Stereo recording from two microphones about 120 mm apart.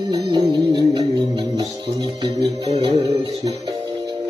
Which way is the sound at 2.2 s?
40° right (ahead or behind).